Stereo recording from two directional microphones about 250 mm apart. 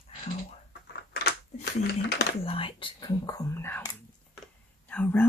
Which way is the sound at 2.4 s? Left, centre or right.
Left.